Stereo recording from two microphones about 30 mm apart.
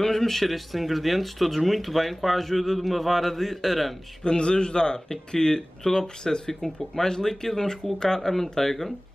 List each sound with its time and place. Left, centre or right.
0.0 s speech: centre
4.2 s speech: left; by 8.9 s centre